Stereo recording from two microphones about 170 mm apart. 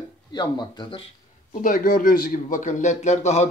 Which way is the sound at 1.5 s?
50° left (ahead or behind).